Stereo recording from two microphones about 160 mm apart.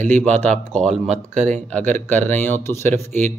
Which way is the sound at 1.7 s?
10° left (ahead or behind).